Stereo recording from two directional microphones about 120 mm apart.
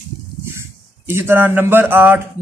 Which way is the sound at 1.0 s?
20° right (ahead or behind).